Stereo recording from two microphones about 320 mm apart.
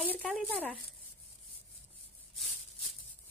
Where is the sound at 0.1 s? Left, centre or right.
Centre.